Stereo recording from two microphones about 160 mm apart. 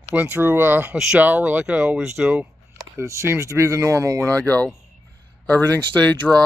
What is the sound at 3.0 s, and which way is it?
Speech, 20° right (ahead or behind).